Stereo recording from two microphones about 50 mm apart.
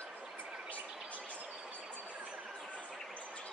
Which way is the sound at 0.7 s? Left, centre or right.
Left.